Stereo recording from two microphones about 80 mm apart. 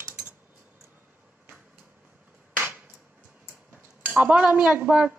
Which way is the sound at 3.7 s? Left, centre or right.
Right.